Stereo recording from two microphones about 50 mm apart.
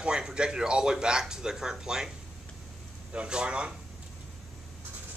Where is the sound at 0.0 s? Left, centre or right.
Centre.